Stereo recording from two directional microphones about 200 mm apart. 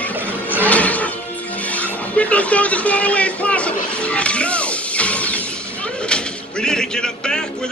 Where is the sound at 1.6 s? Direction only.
5° left (ahead or behind).